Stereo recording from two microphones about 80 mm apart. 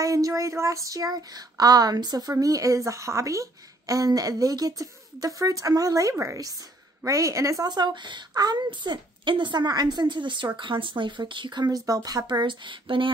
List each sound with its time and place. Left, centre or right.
0.0 s a woman's voice: right
2.3 s a woman's voice: right
7.6 s a woman's voice: right